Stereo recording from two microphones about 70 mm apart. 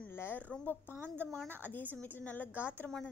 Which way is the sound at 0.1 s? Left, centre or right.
Left.